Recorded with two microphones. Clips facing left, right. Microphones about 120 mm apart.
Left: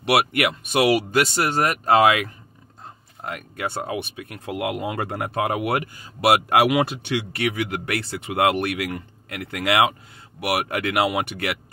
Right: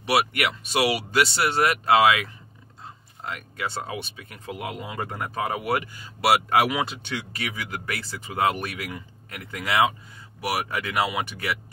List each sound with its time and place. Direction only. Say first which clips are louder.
0.0 s speech: left 3 dB; 55° left (ahead or behind)